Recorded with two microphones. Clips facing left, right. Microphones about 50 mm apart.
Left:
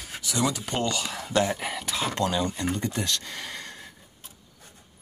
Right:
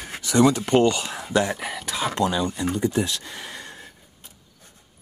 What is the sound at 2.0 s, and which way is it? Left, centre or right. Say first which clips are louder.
Speech: right 3 dB; centre.